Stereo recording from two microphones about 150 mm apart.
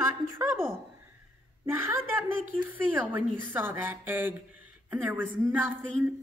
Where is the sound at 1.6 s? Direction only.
15° right (ahead or behind).